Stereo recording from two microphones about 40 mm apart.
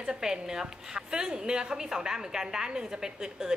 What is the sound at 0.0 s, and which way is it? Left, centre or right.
A woman's voice, centre.